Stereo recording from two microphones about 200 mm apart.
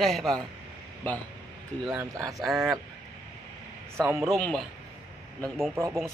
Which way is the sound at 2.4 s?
Centre (ahead or behind).